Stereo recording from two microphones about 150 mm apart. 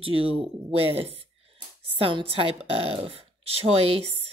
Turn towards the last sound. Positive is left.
turn(degrees=-40)  # may be behind; listen again after turning